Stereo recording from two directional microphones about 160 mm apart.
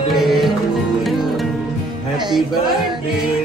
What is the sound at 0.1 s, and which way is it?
Music, centre (ahead or behind).